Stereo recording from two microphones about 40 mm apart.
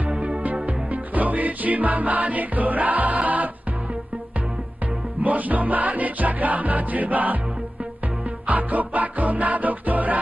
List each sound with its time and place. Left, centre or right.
0.1 s music: right
5.2 s music: right
8.5 s music: right